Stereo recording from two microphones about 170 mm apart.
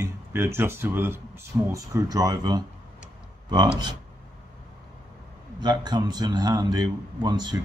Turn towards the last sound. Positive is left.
turn(degrees=-25)  # may be behind; listen again after turning